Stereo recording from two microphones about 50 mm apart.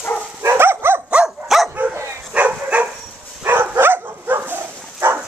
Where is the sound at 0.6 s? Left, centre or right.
Right.